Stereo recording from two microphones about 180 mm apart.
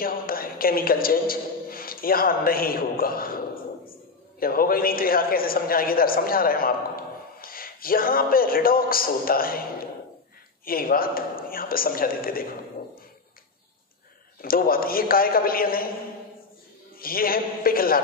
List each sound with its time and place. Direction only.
0.0 s a man's voice: 55° left (ahead or behind)
4.4 s a man's voice: 55° left (ahead or behind)
14.4 s a man's voice: 55° left (ahead or behind)
17.0 s a man's voice: 55° left (ahead or behind)